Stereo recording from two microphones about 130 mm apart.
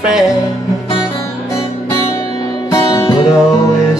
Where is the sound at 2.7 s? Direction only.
30° left (ahead or behind).